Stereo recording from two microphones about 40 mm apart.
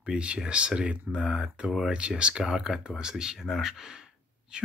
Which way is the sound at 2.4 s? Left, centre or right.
Centre.